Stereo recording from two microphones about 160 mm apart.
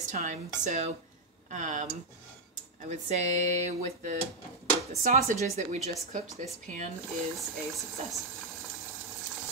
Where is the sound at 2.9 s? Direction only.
50° right (ahead or behind).